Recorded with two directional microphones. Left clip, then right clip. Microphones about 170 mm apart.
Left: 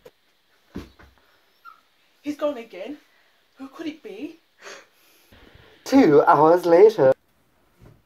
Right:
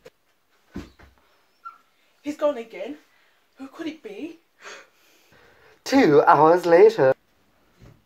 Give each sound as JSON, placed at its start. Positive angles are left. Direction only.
{"t": 2.2, "sound": "speech", "side_deg": -10}
{"t": 4.6, "sound": "wheeze", "side_deg": 25}
{"t": 5.0, "sound": "a sound", "side_deg": 0}
{"t": 5.9, "sound": "speech", "side_deg": 0}